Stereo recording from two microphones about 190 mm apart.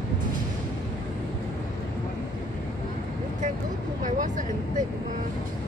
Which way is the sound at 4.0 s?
40° right (ahead or behind).